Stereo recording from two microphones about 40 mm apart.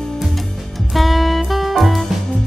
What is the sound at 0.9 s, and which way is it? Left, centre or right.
Music, centre.